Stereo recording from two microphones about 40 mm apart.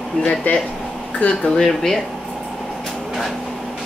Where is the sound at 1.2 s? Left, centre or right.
Left.